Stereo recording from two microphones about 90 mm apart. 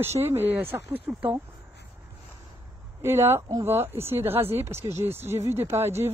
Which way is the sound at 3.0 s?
30° right (ahead or behind).